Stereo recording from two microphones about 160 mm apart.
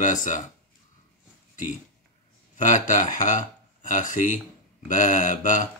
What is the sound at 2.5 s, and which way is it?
Speech, 55° left (ahead or behind).